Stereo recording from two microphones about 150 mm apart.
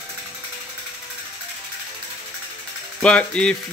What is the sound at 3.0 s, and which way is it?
Speech, 5° left (ahead or behind).